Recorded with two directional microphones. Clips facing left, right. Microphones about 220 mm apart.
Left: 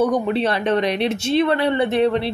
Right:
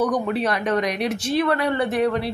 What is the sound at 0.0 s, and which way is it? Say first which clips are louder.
A woman's voice: left 3 dB; 25° left (ahead or behind).